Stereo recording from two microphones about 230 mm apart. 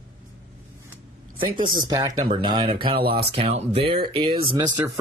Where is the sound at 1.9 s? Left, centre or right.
Centre.